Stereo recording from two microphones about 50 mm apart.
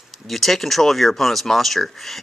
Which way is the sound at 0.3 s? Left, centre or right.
Centre.